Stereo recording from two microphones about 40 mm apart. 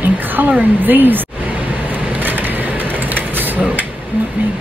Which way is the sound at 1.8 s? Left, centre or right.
Right.